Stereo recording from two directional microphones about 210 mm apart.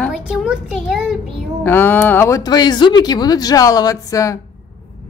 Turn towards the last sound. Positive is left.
turn(degrees=15)  # may be behind; listen again after turning